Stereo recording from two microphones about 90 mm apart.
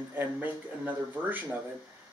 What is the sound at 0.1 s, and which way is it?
A man's voice, 20° right (ahead or behind).